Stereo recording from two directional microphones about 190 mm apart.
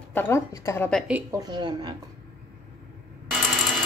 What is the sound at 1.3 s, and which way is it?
Speech, 20° right (ahead or behind).